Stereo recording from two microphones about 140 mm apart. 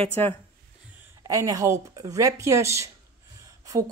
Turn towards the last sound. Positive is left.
turn(degrees=-25)  # may be behind; listen again after turning